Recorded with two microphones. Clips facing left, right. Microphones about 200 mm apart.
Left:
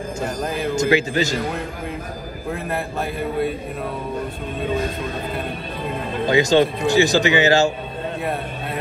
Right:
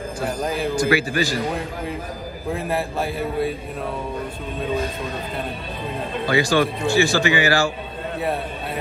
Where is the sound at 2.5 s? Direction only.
5° right (ahead or behind).